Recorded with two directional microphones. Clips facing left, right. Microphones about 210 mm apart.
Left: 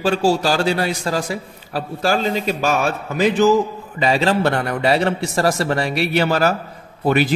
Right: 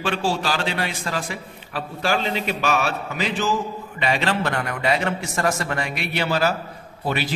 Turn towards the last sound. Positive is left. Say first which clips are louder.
# left 8 dB
turn(degrees=50)  # may be behind; listen again after turning